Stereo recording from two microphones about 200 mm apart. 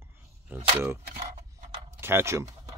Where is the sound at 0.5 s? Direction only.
10° right (ahead or behind).